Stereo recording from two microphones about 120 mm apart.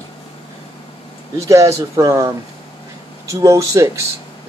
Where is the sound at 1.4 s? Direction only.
25° right (ahead or behind).